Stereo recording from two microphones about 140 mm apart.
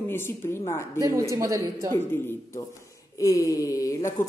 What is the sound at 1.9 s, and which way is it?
Speech, 15° left (ahead or behind).